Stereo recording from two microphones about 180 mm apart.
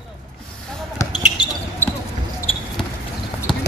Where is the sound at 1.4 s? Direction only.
25° left (ahead or behind).